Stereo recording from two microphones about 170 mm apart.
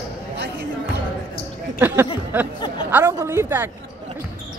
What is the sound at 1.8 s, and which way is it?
Speech, 10° right (ahead or behind).